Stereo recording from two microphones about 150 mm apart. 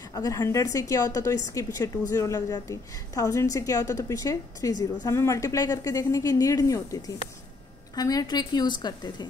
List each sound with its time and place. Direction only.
0.1 s a woman's voice: 25° left (ahead or behind)